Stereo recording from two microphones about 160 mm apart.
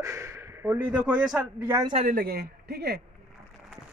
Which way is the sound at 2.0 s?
70° right (ahead or behind).